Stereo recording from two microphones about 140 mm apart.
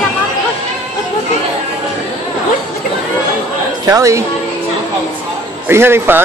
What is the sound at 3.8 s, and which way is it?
Speech, 25° right (ahead or behind).